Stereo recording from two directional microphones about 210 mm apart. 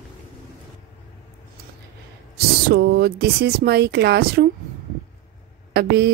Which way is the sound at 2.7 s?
50° right (ahead or behind).